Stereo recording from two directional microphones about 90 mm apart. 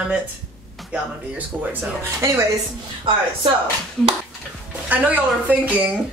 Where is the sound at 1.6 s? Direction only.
20° right (ahead or behind).